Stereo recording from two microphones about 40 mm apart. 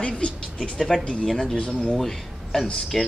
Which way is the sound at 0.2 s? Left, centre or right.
Left.